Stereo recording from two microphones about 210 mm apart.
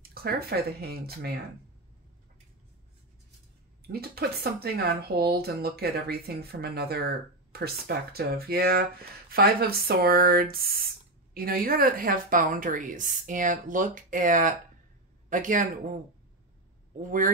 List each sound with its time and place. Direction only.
0.1 s speech: 50° right (ahead or behind)
3.8 s speech: 45° right (ahead or behind)
17.0 s speech: 40° right (ahead or behind)